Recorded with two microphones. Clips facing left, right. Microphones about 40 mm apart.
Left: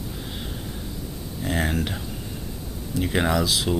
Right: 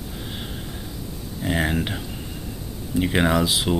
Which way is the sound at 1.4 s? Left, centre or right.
Centre.